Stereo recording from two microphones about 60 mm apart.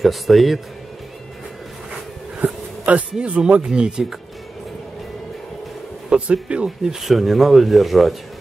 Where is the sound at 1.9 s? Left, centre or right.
Centre.